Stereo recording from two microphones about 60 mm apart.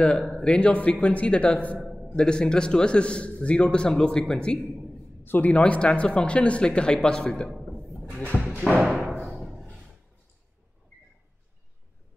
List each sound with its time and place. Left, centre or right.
0.0 s a man's voice: centre
5.2 s speech: left
5.5 s a man's voice: centre
7.8 s music: centre
8.6 s music: centre